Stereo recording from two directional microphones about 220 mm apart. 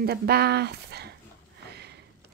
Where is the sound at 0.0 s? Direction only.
45° right (ahead or behind).